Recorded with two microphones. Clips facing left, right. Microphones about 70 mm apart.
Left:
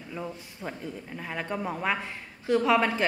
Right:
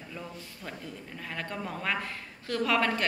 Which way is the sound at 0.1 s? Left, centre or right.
Left.